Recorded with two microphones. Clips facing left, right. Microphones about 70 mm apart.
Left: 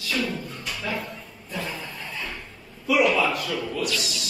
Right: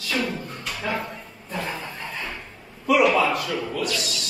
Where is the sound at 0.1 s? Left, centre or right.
Right.